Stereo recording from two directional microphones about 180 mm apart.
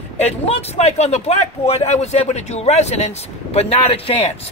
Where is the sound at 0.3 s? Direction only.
35° left (ahead or behind).